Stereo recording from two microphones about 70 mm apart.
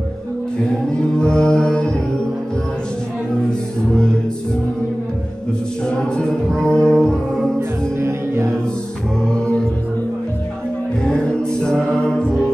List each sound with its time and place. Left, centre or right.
0.7 s a sound: centre
3.4 s a sound: centre
5.9 s music: centre
8.0 s music: right
9.2 s mantra: centre
11.1 s music: centre